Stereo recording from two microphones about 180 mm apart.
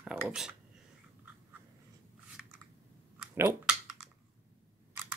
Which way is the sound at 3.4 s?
5° right (ahead or behind).